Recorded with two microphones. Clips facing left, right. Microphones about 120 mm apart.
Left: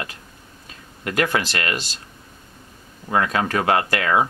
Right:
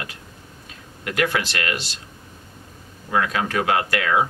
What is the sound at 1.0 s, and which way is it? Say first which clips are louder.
Speech: left 1 dB; 40° left (ahead or behind).